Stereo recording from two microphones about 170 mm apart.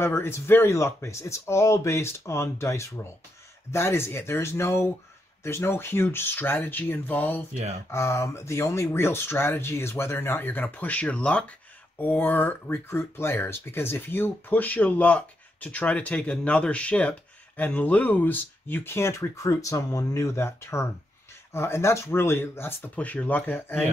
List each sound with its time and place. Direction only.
0.0 s speech: 15° left (ahead or behind)